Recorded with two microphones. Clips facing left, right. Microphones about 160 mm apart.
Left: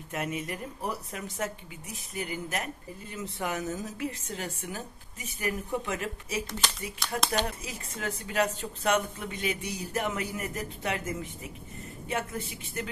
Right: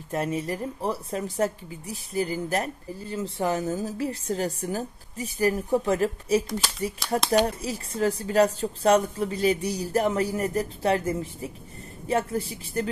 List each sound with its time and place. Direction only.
0.1 s speech: 35° right (ahead or behind)
7.0 s speech: centre (ahead or behind)
7.4 s speech: 35° right (ahead or behind)